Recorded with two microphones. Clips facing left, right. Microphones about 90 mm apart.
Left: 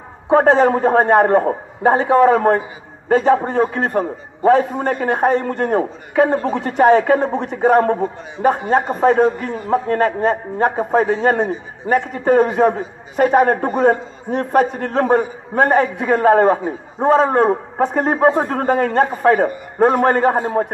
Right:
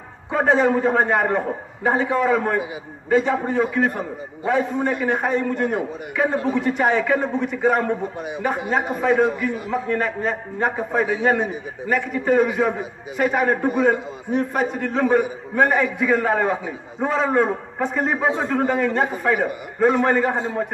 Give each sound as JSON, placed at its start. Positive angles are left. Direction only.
{"t": 0.3, "sound": "a man's voice", "side_deg": 45}
{"t": 6.4, "sound": "a man's voice", "side_deg": 60}
{"t": 12.0, "sound": "a man's voice", "side_deg": 45}
{"t": 13.7, "sound": "a man's voice", "side_deg": 55}